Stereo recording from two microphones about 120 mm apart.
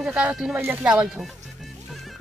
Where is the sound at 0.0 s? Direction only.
10° right (ahead or behind).